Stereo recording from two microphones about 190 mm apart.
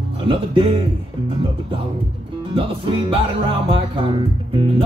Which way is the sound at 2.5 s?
30° right (ahead or behind).